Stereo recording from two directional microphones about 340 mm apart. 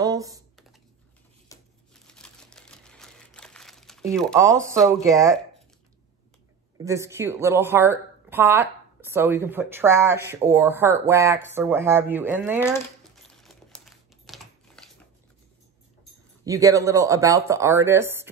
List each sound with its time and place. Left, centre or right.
0.0 s computer keyboard: centre
1.5 s crumpling: centre
2.0 s typewriter: centre
4.4 s speech: centre
6.8 s speech: centre
13.3 s typing: centre
16.4 s speech: centre